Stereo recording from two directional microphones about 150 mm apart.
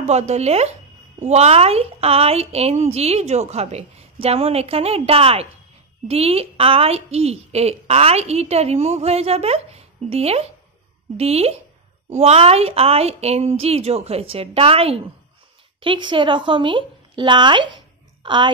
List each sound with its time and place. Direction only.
0.0 s a woman's voice: 50° right (ahead or behind); by 18.5 s 30° right (ahead or behind)